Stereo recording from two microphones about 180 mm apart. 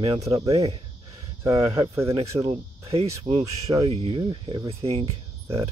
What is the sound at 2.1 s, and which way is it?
Speech, 35° right (ahead or behind).